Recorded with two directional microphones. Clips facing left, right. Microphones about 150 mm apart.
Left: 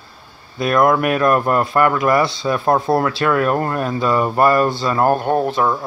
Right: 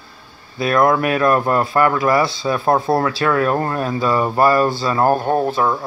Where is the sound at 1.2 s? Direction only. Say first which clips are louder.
Even; 25° right (ahead or behind).